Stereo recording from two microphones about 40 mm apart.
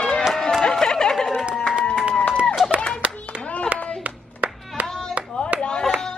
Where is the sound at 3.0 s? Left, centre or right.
Right.